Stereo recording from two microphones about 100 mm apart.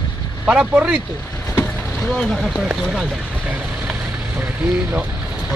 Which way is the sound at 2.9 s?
5° right (ahead or behind).